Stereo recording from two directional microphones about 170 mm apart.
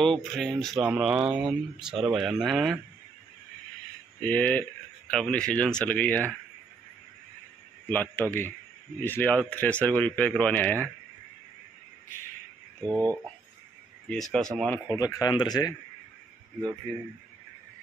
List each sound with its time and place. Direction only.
0.0 s speech: centre (ahead or behind)
4.2 s speech: 10° left (ahead or behind)
7.9 s speech: 10° left (ahead or behind)
12.8 s speech: 20° right (ahead or behind)
14.0 s speech: 5° left (ahead or behind)
14.9 s speech: 20° left (ahead or behind)